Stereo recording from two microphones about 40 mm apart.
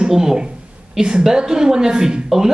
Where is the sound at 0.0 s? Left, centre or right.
Centre.